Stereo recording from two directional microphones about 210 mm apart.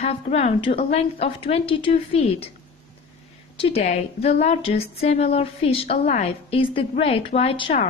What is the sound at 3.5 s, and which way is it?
A woman's voice, 25° left (ahead or behind).